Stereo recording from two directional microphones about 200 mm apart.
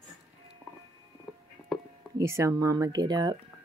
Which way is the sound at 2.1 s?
15° right (ahead or behind).